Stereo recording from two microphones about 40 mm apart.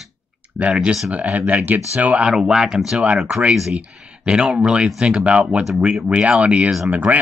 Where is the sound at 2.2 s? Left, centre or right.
Centre.